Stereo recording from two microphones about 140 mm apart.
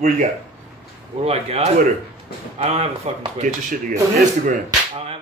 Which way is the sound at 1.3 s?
45° right (ahead or behind).